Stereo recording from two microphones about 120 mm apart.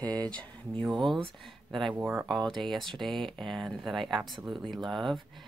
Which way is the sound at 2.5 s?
Centre (ahead or behind).